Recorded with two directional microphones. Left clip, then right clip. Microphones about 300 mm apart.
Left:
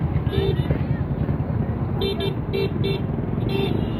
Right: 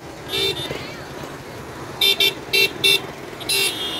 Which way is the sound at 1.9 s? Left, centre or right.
Left.